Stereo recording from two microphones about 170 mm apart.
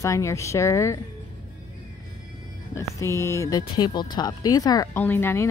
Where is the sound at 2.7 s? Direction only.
15° left (ahead or behind).